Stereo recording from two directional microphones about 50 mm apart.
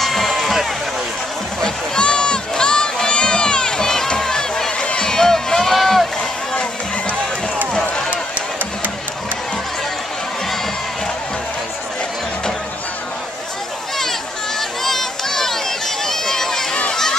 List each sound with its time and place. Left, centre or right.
0.0 s run: centre
1.6 s crowd: centre
4.8 s rowboat: centre
6.5 s run: centre
7.7 s a sound: centre
14.6 s run: centre
16.9 s a sound: centre